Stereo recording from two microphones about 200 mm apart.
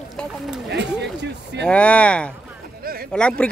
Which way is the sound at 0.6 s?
60° right (ahead or behind).